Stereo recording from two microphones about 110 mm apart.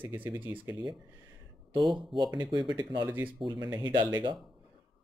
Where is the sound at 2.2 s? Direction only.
35° right (ahead or behind).